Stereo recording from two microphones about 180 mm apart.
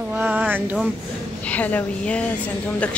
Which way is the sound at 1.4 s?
10° left (ahead or behind).